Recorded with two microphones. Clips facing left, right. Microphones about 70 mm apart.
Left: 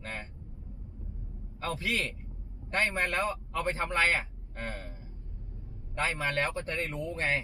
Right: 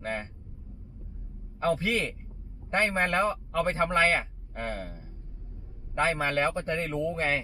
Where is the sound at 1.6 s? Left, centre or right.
Right.